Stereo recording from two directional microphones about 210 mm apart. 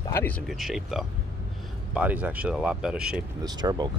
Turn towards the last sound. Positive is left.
turn(degrees=-20)  # may be behind; listen again after turning